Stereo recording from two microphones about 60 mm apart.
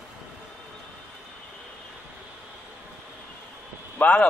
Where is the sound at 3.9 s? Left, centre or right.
Left.